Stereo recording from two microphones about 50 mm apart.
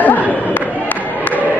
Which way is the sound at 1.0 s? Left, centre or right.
Left.